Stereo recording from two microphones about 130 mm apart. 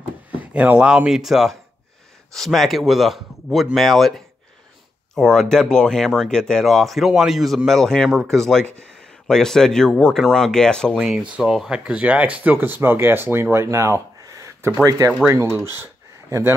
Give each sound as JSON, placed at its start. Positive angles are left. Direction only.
{"t": 0.3, "sound": "speech", "side_deg": -10}